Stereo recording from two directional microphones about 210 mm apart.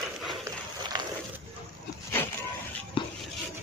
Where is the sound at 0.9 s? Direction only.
20° right (ahead or behind).